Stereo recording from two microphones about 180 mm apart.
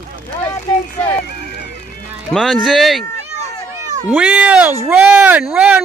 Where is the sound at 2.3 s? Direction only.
Centre (ahead or behind).